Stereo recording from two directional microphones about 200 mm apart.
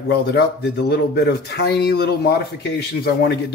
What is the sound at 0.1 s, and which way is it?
Speech, 55° left (ahead or behind).